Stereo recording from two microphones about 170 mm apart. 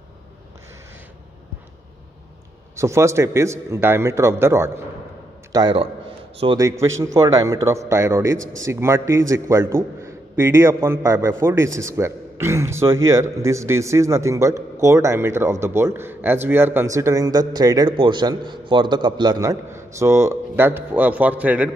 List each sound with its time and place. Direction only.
2.7 s a man's voice: 15° right (ahead or behind)
5.5 s a man's voice: 25° right (ahead or behind); by 21.6 s 10° right (ahead or behind)